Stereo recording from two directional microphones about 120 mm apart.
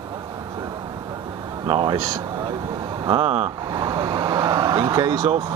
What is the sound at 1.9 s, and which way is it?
Vehicle, 30° right (ahead or behind).